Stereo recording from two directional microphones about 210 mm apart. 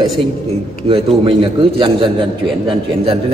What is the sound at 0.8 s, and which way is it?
A man's voice, 25° right (ahead or behind).